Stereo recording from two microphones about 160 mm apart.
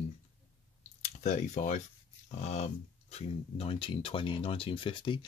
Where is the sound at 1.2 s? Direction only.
50° left (ahead or behind).